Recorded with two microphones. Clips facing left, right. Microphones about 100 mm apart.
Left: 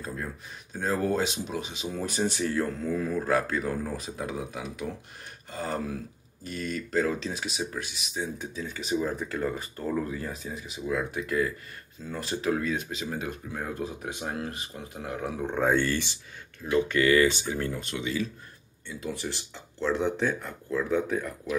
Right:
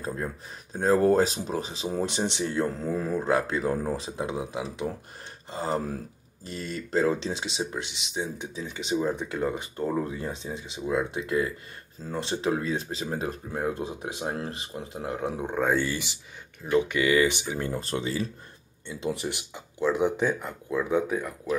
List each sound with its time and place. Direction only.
0.0 s speech: 35° right (ahead or behind)
13.7 s speech: 25° right (ahead or behind)
15.4 s speech: 5° right (ahead or behind)
17.7 s speech: 35° right (ahead or behind)
18.9 s speech: 25° right (ahead or behind)
19.5 s speech: 10° right (ahead or behind)